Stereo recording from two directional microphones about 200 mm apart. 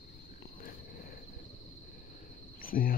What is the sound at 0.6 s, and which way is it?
Cricket, 45° left (ahead or behind).